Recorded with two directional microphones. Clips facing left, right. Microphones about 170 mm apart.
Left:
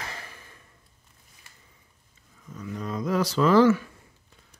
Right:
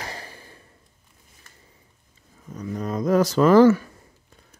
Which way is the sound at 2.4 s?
40° right (ahead or behind).